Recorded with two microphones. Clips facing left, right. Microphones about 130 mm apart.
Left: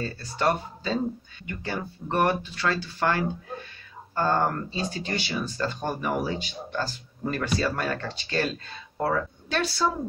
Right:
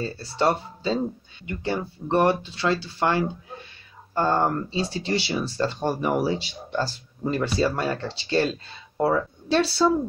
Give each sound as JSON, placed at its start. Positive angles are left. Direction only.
{"t": 0.0, "sound": "speech", "side_deg": -30}
{"t": 8.9, "sound": "speech", "side_deg": -15}
{"t": 9.5, "sound": "speech", "side_deg": -30}